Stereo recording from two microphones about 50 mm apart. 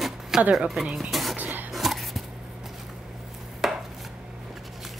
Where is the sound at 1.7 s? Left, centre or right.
Centre.